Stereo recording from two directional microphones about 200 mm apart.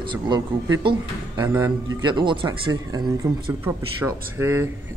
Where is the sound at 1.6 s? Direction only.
20° right (ahead or behind).